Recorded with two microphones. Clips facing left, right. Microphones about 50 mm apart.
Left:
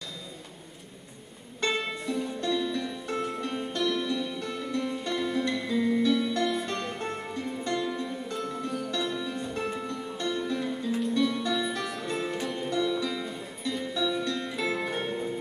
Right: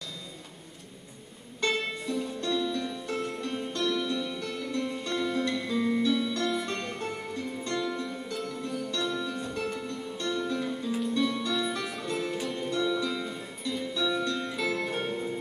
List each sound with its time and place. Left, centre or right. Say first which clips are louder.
1.6 s music: even; centre